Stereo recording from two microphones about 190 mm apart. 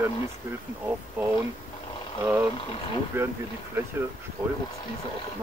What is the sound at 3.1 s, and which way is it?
Speech, 10° right (ahead or behind).